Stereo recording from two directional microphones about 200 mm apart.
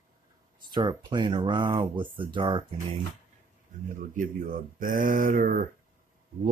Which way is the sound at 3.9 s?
40° right (ahead or behind).